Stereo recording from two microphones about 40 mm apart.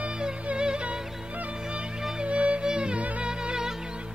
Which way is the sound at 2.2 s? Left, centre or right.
Right.